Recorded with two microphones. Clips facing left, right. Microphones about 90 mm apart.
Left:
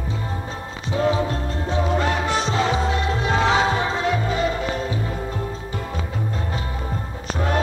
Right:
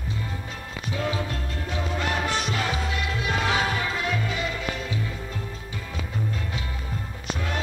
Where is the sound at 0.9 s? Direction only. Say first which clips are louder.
Left 8 dB; 30° left (ahead or behind).